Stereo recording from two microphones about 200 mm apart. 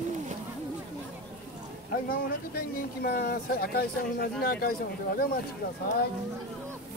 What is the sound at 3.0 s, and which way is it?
Speech, 50° left (ahead or behind).